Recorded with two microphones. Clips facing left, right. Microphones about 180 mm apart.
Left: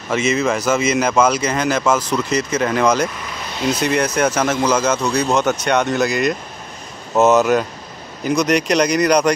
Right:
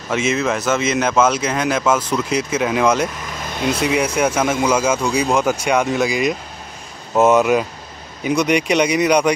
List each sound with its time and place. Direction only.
0.1 s speech: centre (ahead or behind)
3.4 s speech: 55° right (ahead or behind)
3.8 s speech: centre (ahead or behind)
7.2 s speech: 5° left (ahead or behind)